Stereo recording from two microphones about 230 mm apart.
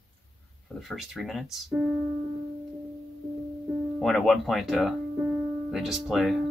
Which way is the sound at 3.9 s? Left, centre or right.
Centre.